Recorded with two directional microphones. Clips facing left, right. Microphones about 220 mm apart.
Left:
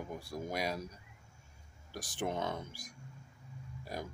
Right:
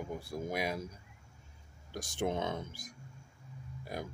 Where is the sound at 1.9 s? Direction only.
25° right (ahead or behind).